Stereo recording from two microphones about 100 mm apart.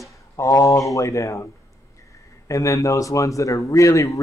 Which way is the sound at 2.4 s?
30° left (ahead or behind).